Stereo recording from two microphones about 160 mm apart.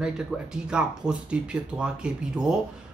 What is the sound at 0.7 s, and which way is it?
Speech, 5° right (ahead or behind).